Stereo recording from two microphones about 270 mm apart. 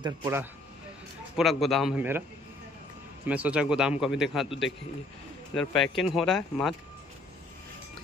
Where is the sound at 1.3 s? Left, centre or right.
Centre.